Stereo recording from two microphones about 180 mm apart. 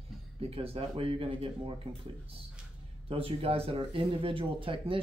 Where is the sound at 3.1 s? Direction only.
30° right (ahead or behind).